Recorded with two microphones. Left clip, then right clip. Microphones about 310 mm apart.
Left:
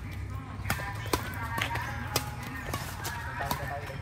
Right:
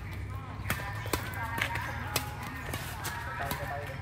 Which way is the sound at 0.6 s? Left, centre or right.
Centre.